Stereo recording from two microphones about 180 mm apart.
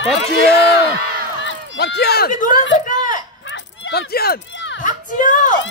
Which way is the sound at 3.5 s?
65° left (ahead or behind).